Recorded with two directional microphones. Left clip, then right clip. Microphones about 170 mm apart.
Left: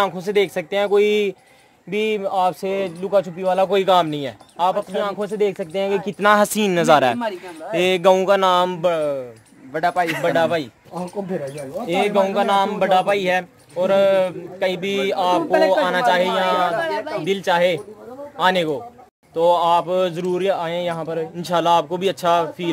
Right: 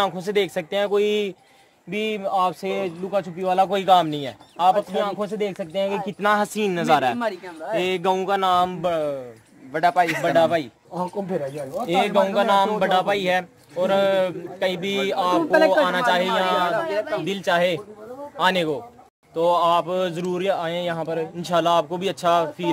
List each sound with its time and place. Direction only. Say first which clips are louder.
0.0 s speech: left 3 dB; 10° left (ahead or behind)
4.6 s speech: right 1 dB; 10° left (ahead or behind)
5.4 s speech: left 5 dB; 35° left (ahead or behind); by 6.2 s 50° left (ahead or behind)
6.2 s a sound: left 5 dB; 65° left (ahead or behind)
7.2 s speech: left 1 dB; 50° right (ahead or behind)
7.7 s a sound: left 6 dB; 60° left (ahead or behind)
8.8 s speech: left 4 dB; 30° left (ahead or behind)
9.7 s speech: right 1 dB; 35° right (ahead or behind)
10.2 s speech: even; 25° left (ahead or behind)
11.9 s a man's voice: left 1 dB; centre (ahead or behind)
21.4 s speech: left 3 dB; 20° left (ahead or behind)